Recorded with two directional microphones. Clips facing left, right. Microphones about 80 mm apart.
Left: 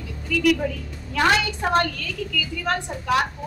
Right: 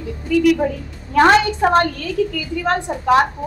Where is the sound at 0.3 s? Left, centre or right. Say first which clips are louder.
Right 6 dB; right.